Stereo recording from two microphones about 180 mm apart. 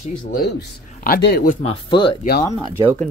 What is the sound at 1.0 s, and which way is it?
Speech, 65° left (ahead or behind).